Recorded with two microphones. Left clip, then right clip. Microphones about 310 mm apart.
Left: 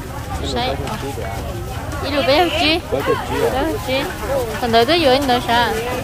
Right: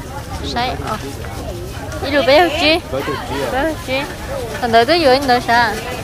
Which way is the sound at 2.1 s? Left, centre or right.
Centre.